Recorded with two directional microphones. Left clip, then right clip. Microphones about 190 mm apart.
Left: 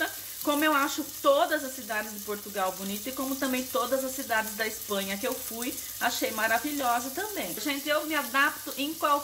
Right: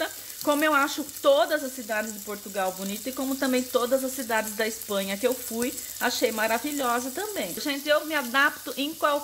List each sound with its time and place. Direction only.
0.0 s frying: 45° right (ahead or behind)
1.9 s speech: 45° right (ahead or behind)